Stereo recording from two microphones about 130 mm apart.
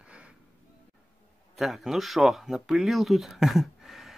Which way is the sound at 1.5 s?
Centre (ahead or behind).